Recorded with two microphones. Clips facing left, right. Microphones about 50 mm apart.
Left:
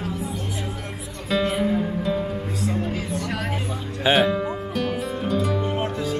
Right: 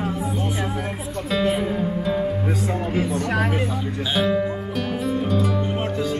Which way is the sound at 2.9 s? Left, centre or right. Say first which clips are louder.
Right 5 dB; right.